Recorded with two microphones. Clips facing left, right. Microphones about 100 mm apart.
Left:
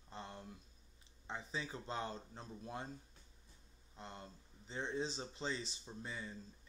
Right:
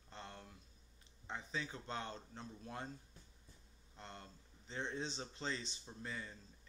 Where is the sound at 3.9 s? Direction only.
10° left (ahead or behind).